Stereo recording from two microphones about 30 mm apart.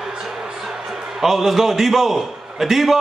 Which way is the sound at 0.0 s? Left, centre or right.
Centre.